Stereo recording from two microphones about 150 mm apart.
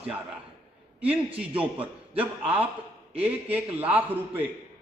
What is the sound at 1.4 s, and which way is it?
A man's voice, 10° right (ahead or behind).